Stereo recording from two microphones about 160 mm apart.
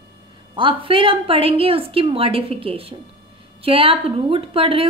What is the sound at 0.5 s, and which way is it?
A woman's voice, 30° right (ahead or behind).